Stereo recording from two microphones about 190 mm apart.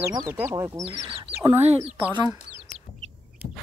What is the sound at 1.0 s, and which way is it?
Chicken, 30° right (ahead or behind).